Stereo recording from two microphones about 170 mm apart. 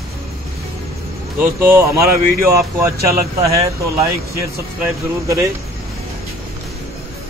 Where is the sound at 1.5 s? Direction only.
15° right (ahead or behind).